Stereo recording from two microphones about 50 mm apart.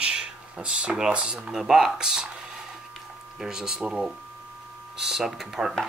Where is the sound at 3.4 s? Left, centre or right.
Centre.